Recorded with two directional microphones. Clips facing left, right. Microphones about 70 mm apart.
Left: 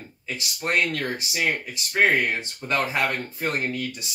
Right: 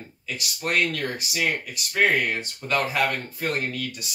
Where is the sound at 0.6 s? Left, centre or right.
Left.